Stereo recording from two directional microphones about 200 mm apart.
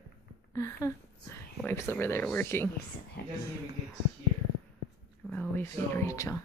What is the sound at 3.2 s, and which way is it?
Speech, 50° left (ahead or behind).